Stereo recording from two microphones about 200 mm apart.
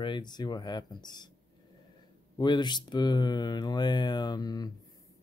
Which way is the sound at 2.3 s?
20° left (ahead or behind).